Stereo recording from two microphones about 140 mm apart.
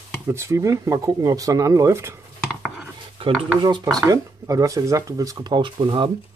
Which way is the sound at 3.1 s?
40° right (ahead or behind).